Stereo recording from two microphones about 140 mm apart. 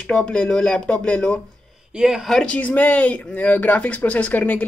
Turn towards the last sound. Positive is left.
turn(degrees=10)  # may be behind; listen again after turning